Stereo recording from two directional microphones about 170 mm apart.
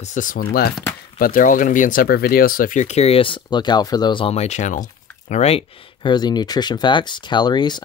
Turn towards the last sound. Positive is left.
turn(degrees=25)  # may be behind; listen again after turning